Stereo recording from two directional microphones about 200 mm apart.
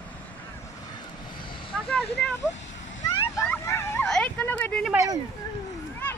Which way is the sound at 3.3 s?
15° left (ahead or behind).